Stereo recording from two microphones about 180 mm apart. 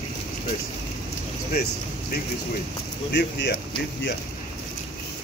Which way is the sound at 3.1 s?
70° left (ahead or behind).